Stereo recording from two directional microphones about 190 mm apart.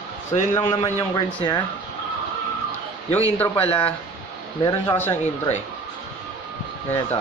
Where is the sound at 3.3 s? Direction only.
10° left (ahead or behind).